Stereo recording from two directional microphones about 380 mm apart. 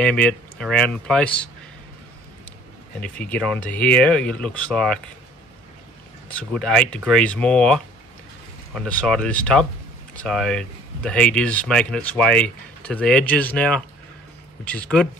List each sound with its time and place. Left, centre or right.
0.0 s speech: centre
3.0 s speech: centre
6.2 s speech: centre